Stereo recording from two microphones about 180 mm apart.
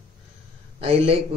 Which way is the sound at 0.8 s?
30° right (ahead or behind).